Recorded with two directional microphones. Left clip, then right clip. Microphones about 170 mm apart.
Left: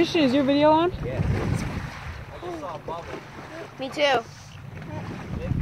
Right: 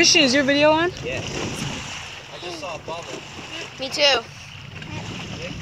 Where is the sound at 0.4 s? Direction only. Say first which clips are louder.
Right 2 dB; 10° right (ahead or behind).